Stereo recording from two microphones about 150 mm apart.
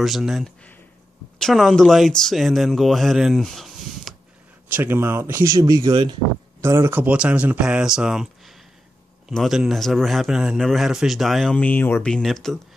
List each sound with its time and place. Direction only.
0.0 s a man's voice: centre (ahead or behind)
4.6 s speech: 15° right (ahead or behind); by 6.1 s 30° right (ahead or behind)
6.6 s a man's voice: 20° right (ahead or behind); by 12.5 s centre (ahead or behind)